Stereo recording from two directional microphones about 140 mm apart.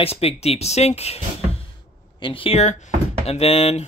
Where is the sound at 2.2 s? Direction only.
40° left (ahead or behind).